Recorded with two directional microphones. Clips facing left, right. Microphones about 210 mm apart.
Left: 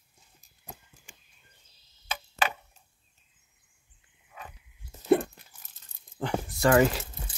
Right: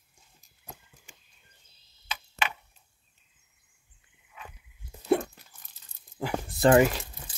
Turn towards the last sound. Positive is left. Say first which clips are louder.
# right 2 dB
turn(degrees=-25)  # may be behind; listen again after turning